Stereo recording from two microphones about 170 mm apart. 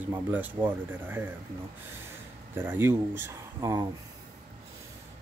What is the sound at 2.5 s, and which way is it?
Speech, 15° right (ahead or behind).